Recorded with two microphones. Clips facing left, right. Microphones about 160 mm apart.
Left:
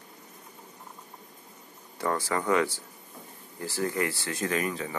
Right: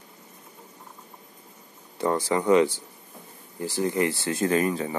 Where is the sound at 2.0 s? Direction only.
20° right (ahead or behind).